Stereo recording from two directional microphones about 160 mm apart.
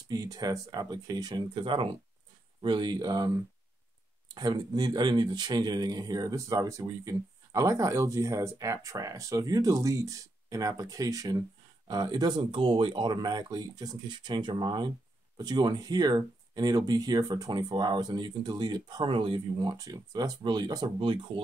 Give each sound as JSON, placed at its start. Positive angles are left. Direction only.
{"t": 0.1, "sound": "speech", "side_deg": -25}